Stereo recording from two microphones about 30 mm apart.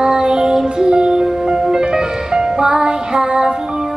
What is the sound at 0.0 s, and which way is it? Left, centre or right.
Music, right.